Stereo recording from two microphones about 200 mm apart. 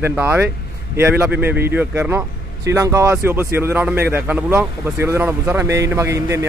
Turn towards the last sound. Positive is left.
turn(degrees=-15)  # may be behind; listen again after turning